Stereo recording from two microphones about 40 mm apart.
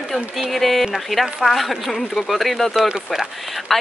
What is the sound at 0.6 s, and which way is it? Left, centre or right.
A woman's voice, centre.